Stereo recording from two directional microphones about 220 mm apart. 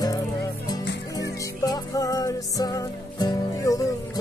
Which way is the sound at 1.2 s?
15° left (ahead or behind).